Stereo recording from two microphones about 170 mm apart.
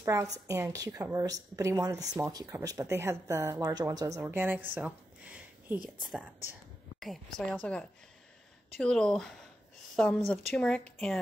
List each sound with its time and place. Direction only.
0.0 s a woman's voice: 15° right (ahead or behind)
4.2 s a sound: 10° right (ahead or behind)
6.0 s a woman's voice: 5° right (ahead or behind)
7.7 s speech: 5° left (ahead or behind)